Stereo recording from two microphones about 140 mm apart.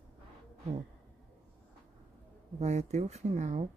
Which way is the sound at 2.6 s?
50° right (ahead or behind).